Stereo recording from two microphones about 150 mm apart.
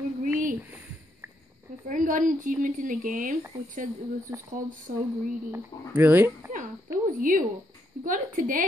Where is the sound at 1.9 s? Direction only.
60° right (ahead or behind).